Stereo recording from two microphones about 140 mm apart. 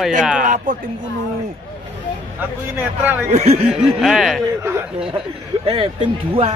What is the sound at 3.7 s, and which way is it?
Speech, centre (ahead or behind).